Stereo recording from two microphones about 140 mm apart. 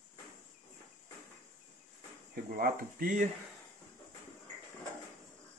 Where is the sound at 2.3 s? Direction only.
90° right; by 3.3 s 70° right (ahead or behind).